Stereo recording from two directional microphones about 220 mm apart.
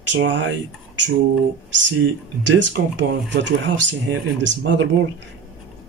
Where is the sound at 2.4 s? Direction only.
55° right (ahead or behind).